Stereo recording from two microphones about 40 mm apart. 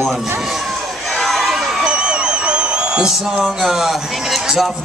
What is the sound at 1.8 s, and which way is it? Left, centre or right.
Music, right.